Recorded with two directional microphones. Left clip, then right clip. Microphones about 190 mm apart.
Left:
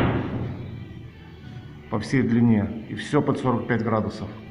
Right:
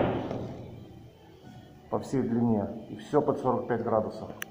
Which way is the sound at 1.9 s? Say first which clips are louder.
Left 5 dB; 30° left (ahead or behind).